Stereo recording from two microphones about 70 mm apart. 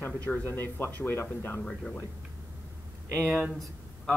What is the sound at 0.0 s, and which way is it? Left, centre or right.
Speech, left.